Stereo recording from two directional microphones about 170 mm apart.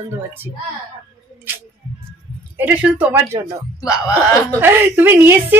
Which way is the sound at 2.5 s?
10° right (ahead or behind).